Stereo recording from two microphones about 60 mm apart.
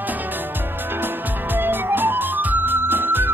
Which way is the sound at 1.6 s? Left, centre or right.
Right.